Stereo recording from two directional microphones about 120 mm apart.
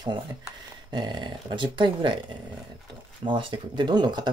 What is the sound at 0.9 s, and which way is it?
Speech, 40° right (ahead or behind).